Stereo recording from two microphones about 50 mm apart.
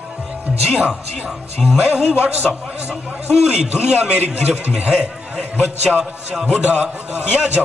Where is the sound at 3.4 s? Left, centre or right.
Centre.